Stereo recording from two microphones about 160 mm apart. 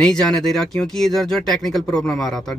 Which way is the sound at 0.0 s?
5° left (ahead or behind).